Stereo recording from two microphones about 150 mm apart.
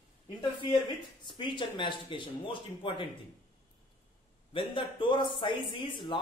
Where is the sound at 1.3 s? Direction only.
30° left (ahead or behind).